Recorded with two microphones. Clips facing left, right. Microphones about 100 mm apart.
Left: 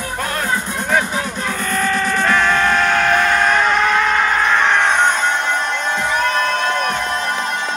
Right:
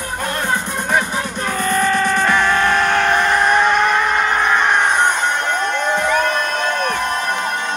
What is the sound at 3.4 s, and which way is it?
Music, 15° right (ahead or behind).